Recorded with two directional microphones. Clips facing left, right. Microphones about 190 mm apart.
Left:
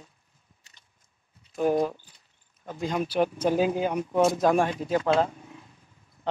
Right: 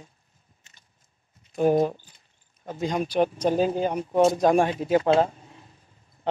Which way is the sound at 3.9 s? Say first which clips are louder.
Right 2 dB; 25° right (ahead or behind).